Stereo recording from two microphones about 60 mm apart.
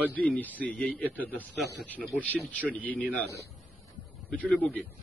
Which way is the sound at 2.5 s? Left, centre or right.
Left.